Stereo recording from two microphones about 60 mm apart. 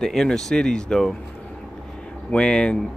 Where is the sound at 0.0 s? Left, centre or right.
Centre.